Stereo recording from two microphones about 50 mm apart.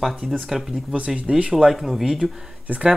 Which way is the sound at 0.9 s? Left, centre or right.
Right.